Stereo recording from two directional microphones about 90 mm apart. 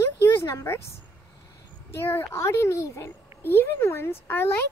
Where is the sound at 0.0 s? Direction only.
30° left (ahead or behind).